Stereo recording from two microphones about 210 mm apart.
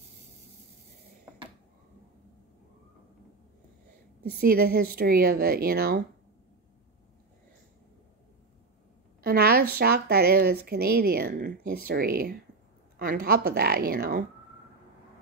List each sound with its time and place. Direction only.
4.2 s a woman's voice: 45° right (ahead or behind)
9.2 s a woman's voice: 45° right (ahead or behind)